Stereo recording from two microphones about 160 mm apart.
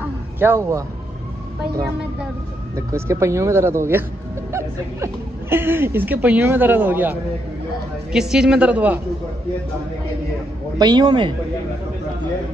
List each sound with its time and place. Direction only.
0.4 s a woman's voice: 15° right (ahead or behind)
2.7 s a woman's voice: 20° right (ahead or behind)
10.8 s a man's voice: 25° right (ahead or behind)